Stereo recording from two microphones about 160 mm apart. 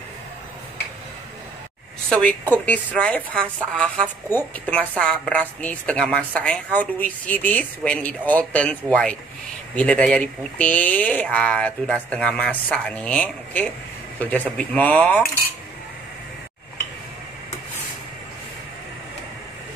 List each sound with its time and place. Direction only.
2.0 s a woman's voice: 5° left (ahead or behind)